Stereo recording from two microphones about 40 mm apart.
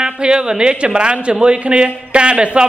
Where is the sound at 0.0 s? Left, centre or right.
Right.